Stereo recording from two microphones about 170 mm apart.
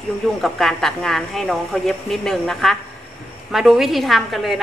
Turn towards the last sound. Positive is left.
turn(degrees=0)  # may be behind; listen again after turning